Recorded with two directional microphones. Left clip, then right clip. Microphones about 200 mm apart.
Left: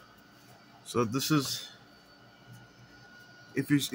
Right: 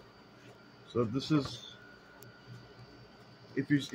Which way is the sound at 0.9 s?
75° left (ahead or behind).